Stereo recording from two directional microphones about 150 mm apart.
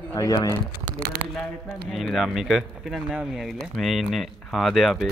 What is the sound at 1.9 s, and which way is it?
Speech, centre (ahead or behind).